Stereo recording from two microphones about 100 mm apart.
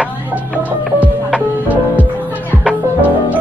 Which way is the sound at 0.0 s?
15° right (ahead or behind).